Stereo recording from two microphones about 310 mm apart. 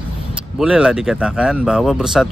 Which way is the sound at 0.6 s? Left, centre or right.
Centre.